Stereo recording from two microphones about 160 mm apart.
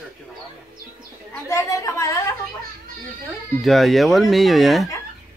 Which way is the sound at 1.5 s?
20° left (ahead or behind).